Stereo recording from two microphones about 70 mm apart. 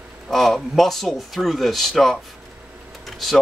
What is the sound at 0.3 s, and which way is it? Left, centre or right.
Speech, centre.